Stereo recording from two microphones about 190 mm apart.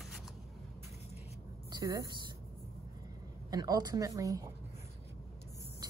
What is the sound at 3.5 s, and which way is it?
Speech, 20° right (ahead or behind).